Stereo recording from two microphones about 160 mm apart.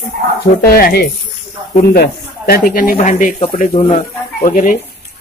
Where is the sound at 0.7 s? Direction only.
75° left (ahead or behind).